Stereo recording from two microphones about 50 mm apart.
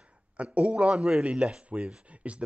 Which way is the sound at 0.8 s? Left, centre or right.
Centre.